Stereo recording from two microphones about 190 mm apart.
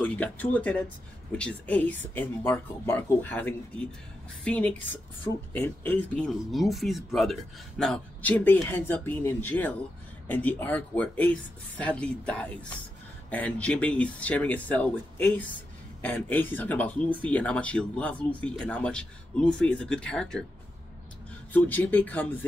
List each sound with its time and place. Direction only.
0.0 s speech: 5° left (ahead or behind)
21.5 s speech: 10° left (ahead or behind)